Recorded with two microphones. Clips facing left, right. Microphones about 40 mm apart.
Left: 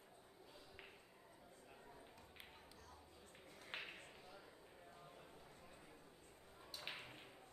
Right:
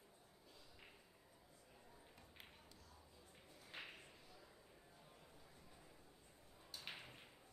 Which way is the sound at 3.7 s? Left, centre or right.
Left.